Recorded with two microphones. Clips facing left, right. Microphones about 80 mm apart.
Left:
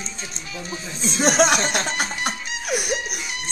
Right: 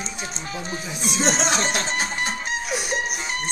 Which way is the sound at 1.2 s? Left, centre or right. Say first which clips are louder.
Left 5 dB; left.